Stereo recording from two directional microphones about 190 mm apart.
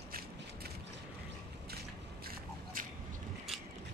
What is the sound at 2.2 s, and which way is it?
Biting, 45° right (ahead or behind).